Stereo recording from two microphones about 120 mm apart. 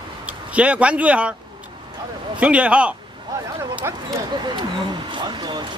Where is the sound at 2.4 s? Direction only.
10° right (ahead or behind).